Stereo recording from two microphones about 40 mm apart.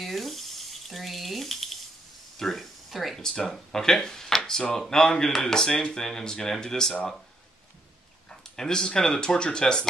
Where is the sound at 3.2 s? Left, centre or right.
Centre.